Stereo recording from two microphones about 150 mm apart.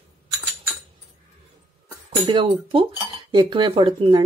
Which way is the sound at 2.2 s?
35° right (ahead or behind).